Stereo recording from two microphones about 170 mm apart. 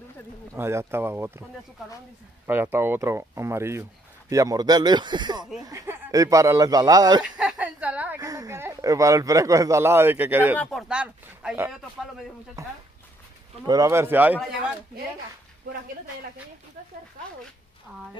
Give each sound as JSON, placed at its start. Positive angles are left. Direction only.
{"t": 0.6, "sound": "speech", "side_deg": -15}
{"t": 2.4, "sound": "speech", "side_deg": -10}
{"t": 7.2, "sound": "a sound", "side_deg": -5}
{"t": 8.2, "sound": "speech", "side_deg": -20}
{"t": 10.6, "sound": "speech", "side_deg": 0}